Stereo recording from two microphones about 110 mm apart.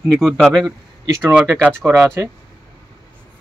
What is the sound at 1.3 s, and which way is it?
Speech, 15° right (ahead or behind).